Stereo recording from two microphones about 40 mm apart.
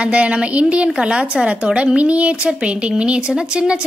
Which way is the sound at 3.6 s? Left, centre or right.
Right.